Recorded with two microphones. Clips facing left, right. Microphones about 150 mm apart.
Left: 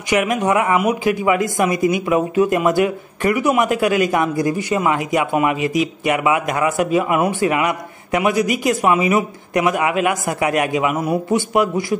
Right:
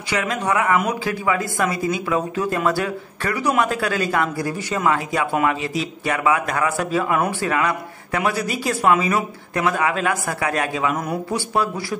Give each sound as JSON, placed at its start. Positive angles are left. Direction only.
{"t": 0.1, "sound": "a man's voice", "side_deg": 20}